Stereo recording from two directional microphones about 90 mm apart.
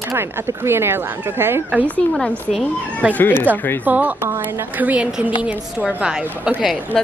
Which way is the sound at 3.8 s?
20° right (ahead or behind).